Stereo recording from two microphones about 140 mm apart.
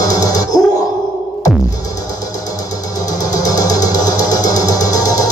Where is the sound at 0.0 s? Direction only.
25° left (ahead or behind).